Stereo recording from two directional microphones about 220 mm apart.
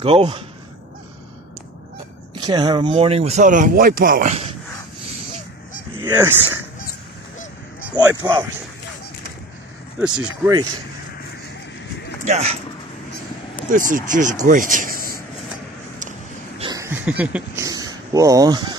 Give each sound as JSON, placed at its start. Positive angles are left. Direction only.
{"t": 0.0, "sound": "speech", "side_deg": -25}
{"t": 2.3, "sound": "speech", "side_deg": -20}
{"t": 6.0, "sound": "speech", "side_deg": -10}
{"t": 7.9, "sound": "speech", "side_deg": -15}
{"t": 9.9, "sound": "speech", "side_deg": -5}
{"t": 12.3, "sound": "speech", "side_deg": -30}
{"t": 13.7, "sound": "speech", "side_deg": -35}
{"t": 14.4, "sound": "a sound", "side_deg": -35}
{"t": 16.5, "sound": "a sound", "side_deg": -20}